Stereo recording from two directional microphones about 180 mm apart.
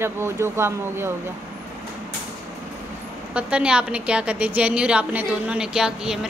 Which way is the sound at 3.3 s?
5° right (ahead or behind).